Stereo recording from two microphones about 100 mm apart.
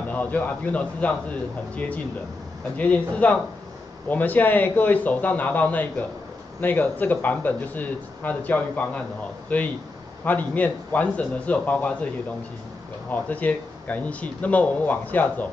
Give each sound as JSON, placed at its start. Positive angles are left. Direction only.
{"t": 0.1, "sound": "speech", "side_deg": 15}
{"t": 13.1, "sound": "speech", "side_deg": 15}